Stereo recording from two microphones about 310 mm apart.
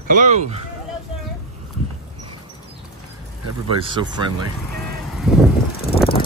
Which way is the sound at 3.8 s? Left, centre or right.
Centre.